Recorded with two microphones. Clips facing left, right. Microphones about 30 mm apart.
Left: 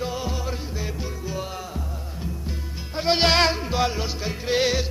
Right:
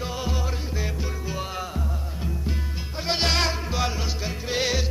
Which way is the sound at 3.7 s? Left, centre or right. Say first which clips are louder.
Left 3 dB; centre.